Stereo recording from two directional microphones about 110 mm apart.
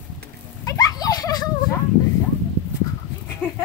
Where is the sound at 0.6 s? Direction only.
35° left (ahead or behind).